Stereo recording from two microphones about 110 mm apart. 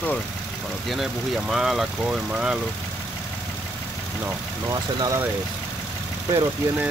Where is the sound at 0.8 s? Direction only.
Centre (ahead or behind).